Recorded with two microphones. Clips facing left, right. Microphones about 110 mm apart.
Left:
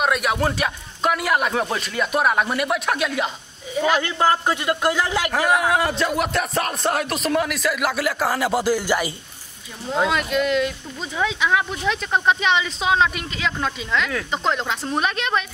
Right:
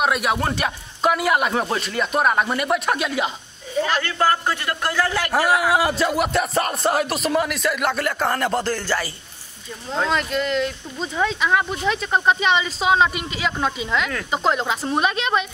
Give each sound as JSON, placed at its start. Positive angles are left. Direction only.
{"t": 0.0, "sound": "speech", "side_deg": 0}
{"t": 3.7, "sound": "a man's voice", "side_deg": 10}
{"t": 5.3, "sound": "speech", "side_deg": -5}
{"t": 9.8, "sound": "speech", "side_deg": 5}